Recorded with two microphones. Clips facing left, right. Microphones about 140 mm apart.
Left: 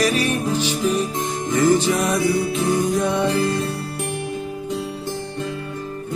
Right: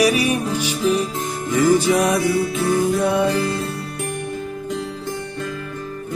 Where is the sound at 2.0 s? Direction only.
Centre (ahead or behind).